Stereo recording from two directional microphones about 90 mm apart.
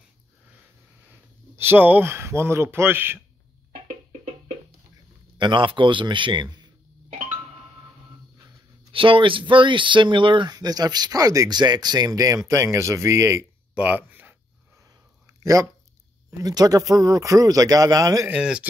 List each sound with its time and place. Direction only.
1.6 s a man's voice: 25° right (ahead or behind)
5.4 s speech: 65° right (ahead or behind)
8.9 s speech: 75° right (ahead or behind)
10.5 s speech: 45° right (ahead or behind); by 13.5 s 30° right (ahead or behind)
13.7 s speech: 15° right (ahead or behind)
14.8 s a sound: 35° right (ahead or behind)
16.3 s speech: 40° right (ahead or behind)
18.3 s speech: 10° right (ahead or behind)